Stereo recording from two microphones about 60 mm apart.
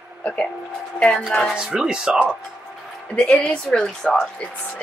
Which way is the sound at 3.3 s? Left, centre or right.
Left.